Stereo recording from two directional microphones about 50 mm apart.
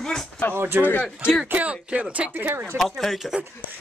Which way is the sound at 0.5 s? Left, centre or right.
Right.